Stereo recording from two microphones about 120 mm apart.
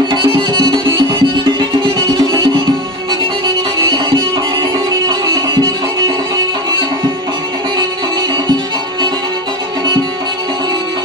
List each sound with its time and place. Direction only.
0.1 s music: 45° right (ahead or behind)
3.9 s music: 40° right (ahead or behind)